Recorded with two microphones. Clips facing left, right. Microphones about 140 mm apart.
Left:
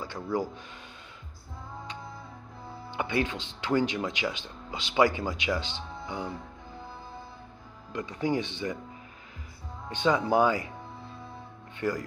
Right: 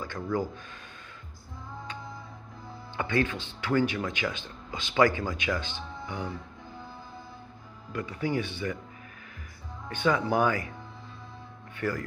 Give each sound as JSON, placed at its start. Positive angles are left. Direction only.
{"t": 0.0, "sound": "speech", "side_deg": 15}
{"t": 2.9, "sound": "speech", "side_deg": 15}
{"t": 7.9, "sound": "speech", "side_deg": 20}
{"t": 9.8, "sound": "speech", "side_deg": 20}
{"t": 11.8, "sound": "speech", "side_deg": 15}